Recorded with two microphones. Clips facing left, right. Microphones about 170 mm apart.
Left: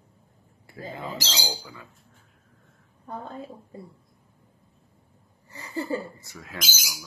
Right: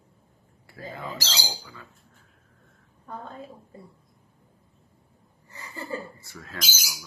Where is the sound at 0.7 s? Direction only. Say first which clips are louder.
Left 1 dB; 25° left (ahead or behind).